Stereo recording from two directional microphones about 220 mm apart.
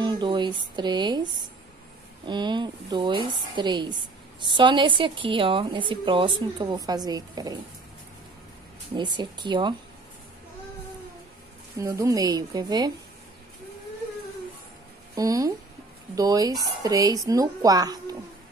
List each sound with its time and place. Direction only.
0.0 s a woman's voice: 20° right (ahead or behind)
2.2 s a woman's voice: 20° right (ahead or behind)
8.9 s a woman's voice: 20° right (ahead or behind)
11.8 s a woman's voice: 15° right (ahead or behind)
15.1 s a woman's voice: 15° right (ahead or behind)